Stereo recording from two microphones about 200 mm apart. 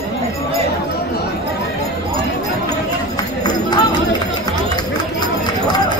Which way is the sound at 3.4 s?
20° left (ahead or behind).